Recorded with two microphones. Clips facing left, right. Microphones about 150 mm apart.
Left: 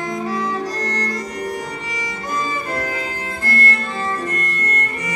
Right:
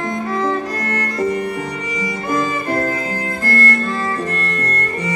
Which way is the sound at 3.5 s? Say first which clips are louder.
Right 3 dB; 40° right (ahead or behind).